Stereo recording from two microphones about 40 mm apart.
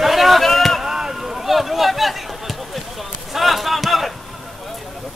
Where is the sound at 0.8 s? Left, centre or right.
Centre.